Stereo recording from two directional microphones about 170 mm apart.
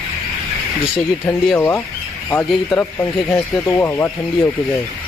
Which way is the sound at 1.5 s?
15° left (ahead or behind).